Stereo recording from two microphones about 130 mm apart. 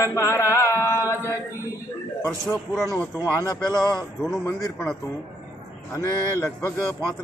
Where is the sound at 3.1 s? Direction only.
20° right (ahead or behind).